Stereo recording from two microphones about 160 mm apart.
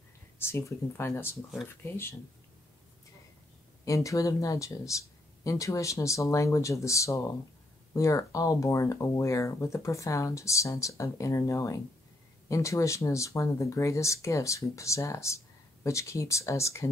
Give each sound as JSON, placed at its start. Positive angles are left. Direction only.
{"t": 0.4, "sound": "speech", "side_deg": 15}
{"t": 3.8, "sound": "speech", "side_deg": 20}